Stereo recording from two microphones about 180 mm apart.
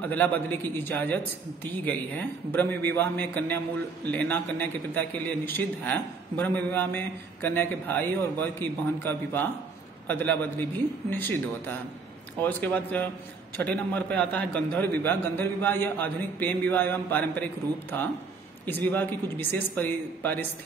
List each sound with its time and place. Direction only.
0.0 s a man's voice: 10° left (ahead or behind)
18.9 s a man's voice: 10° left (ahead or behind)